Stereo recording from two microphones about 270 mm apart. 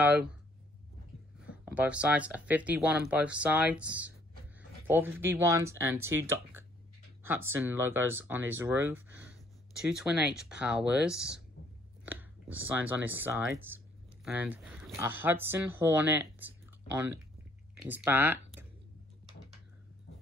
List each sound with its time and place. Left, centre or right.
0.0 s speech: centre
1.7 s speech: centre
11.6 s whispering: left
12.1 s speech: centre